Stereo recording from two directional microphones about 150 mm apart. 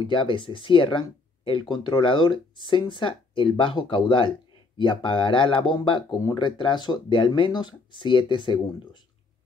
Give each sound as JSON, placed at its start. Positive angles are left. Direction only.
{"t": 0.0, "sound": "speech", "side_deg": 35}